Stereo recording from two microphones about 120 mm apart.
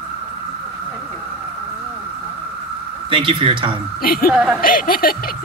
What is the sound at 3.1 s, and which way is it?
Speech, 45° right (ahead or behind).